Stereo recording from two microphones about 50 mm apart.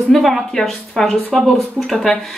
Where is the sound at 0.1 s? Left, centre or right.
Centre.